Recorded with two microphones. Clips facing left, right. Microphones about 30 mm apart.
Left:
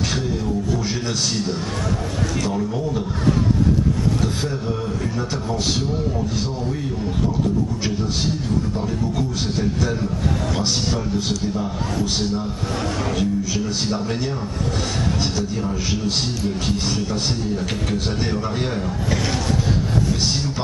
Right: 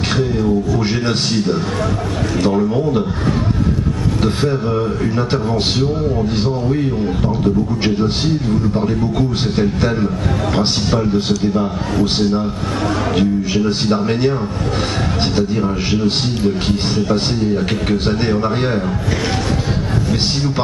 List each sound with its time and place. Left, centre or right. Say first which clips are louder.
0.8 s a man's voice: right 6 dB; right
4.2 s a man's voice: right 7 dB; right
6.3 s a man's voice: right 8 dB; right
9.6 s a man's voice: right 7 dB; right
15.3 s a man's voice: right 7 dB; right